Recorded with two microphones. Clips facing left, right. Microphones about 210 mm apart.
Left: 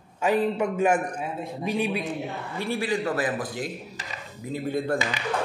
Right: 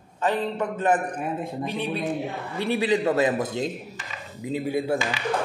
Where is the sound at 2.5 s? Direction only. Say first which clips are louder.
Right 4 dB; 20° right (ahead or behind).